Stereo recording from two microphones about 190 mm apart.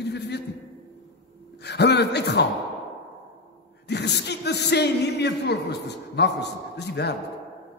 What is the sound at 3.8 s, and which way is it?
Speech, 60° left (ahead or behind).